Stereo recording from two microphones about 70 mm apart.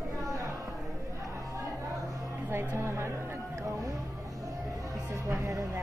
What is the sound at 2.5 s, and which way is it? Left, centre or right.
Music, right.